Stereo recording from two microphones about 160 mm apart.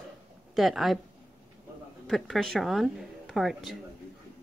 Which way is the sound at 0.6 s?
Centre (ahead or behind).